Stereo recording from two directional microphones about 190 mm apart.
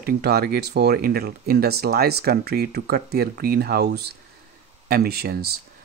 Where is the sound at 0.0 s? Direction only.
55° right (ahead or behind).